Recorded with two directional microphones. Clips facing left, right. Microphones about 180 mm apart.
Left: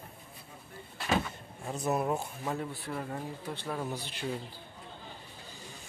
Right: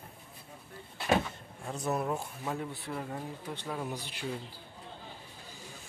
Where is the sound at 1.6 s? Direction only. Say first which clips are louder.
Left 2 dB; 20° left (ahead or behind).